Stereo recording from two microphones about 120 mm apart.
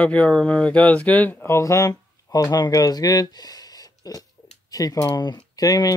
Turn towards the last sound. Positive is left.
turn(degrees=30)  # may be behind; listen again after turning